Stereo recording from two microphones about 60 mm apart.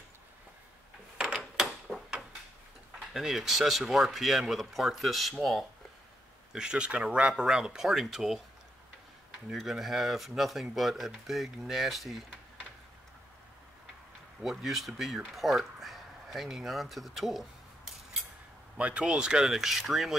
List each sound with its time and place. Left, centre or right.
1.1 s a sound: centre
3.1 s speech: centre
6.5 s speech: centre
9.5 s speech: centre
14.4 s speech: centre
18.8 s speech: right; by 20.2 s centre